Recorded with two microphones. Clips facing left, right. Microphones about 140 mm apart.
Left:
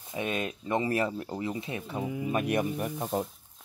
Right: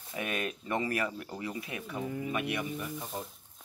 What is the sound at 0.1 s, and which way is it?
Speech, 25° left (ahead or behind).